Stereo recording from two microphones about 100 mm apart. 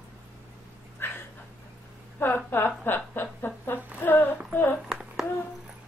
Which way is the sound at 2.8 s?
20° left (ahead or behind).